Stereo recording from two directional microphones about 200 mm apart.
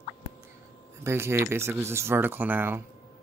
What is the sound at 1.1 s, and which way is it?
Speech, 10° right (ahead or behind).